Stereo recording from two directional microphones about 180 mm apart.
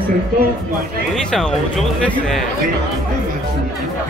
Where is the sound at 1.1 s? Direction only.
Centre (ahead or behind).